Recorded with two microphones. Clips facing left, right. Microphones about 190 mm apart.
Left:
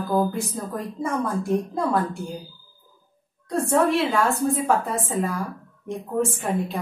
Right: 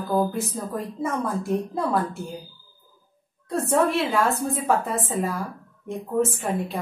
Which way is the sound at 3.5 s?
Centre (ahead or behind).